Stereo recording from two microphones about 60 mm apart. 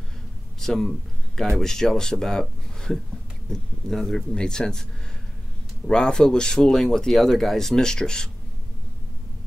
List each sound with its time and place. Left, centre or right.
0.6 s a man's voice: centre
3.4 s speech: centre
5.9 s speech: centre